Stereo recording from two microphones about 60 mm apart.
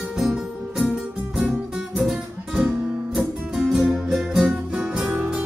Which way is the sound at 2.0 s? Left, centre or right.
Centre.